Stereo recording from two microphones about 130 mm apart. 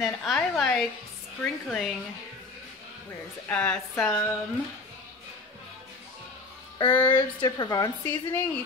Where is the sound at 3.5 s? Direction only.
10° left (ahead or behind).